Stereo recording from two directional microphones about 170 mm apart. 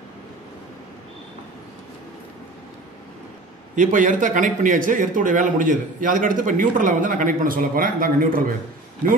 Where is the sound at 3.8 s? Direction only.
50° right (ahead or behind).